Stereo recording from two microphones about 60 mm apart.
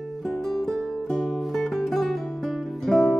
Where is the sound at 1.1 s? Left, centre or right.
Centre.